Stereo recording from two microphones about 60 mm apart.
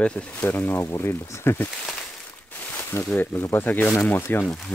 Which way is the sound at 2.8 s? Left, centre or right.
Left.